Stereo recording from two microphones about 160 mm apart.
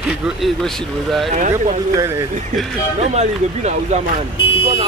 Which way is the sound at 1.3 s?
50° right (ahead or behind).